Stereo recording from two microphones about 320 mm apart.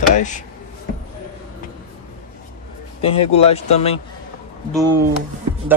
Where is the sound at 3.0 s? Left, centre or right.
Centre.